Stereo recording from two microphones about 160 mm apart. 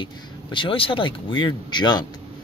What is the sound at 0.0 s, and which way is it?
Speech, 30° left (ahead or behind).